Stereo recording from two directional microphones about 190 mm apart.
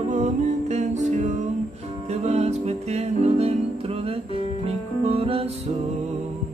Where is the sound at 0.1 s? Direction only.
35° right (ahead or behind).